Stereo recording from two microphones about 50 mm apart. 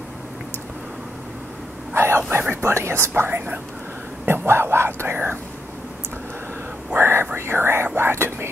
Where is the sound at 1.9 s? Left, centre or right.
Right.